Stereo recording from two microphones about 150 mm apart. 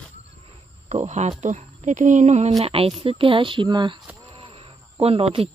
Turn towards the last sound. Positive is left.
turn(degrees=-40)  # may be behind; listen again after turning